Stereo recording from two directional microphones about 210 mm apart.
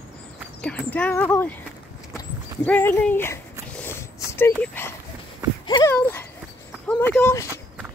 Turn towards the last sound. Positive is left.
turn(degrees=-10)  # may be behind; listen again after turning